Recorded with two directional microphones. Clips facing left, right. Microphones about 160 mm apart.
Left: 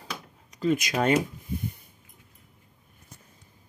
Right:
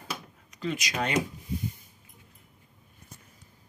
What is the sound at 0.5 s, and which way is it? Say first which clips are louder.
Speech: left 7 dB; 45° left (ahead or behind).